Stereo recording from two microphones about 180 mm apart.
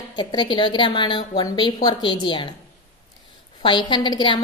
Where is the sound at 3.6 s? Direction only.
25° left (ahead or behind).